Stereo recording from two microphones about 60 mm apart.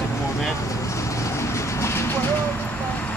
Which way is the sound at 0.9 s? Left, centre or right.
Left.